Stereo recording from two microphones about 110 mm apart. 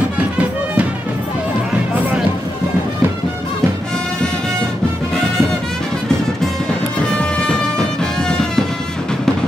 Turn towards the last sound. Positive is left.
turn(degrees=10)  # may be behind; listen again after turning